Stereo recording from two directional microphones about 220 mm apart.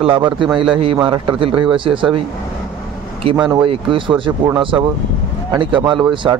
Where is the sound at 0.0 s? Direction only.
25° right (ahead or behind).